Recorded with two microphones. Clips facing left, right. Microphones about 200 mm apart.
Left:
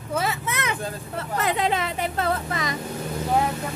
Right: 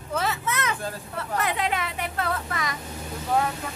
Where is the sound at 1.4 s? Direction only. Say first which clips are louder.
Left 4 dB; 30° left (ahead or behind).